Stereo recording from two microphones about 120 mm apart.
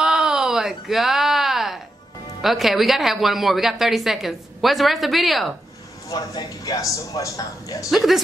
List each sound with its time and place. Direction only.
0.0 s a sound: 5° right (ahead or behind)
2.4 s speech: centre (ahead or behind)
6.0 s a man's voice: 30° left (ahead or behind)
7.9 s speech: centre (ahead or behind)